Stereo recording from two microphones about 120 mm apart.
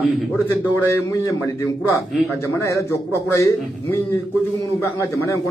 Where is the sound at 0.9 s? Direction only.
25° left (ahead or behind).